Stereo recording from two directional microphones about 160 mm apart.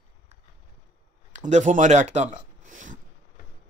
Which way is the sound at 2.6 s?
55° right (ahead or behind).